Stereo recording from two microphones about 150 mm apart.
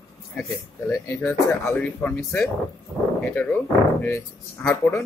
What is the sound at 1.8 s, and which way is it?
Speech, 10° left (ahead or behind).